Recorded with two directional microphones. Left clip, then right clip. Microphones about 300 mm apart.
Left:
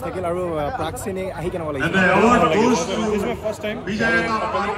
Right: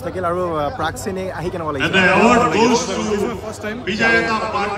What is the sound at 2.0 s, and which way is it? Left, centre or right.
Speech, right.